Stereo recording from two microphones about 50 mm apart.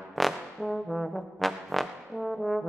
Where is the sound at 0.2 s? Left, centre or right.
Centre.